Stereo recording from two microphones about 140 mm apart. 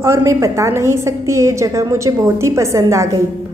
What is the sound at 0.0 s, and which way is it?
A woman's voice, 20° right (ahead or behind).